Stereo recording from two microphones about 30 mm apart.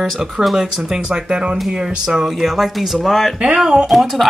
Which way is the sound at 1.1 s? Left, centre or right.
Right.